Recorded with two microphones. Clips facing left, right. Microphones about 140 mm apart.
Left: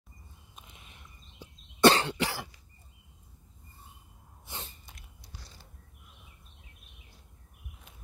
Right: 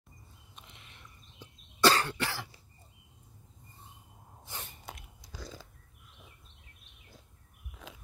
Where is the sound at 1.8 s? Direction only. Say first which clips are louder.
Left 4 dB; 20° left (ahead or behind).